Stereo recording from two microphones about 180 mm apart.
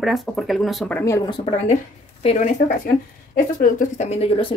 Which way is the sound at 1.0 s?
20° left (ahead or behind).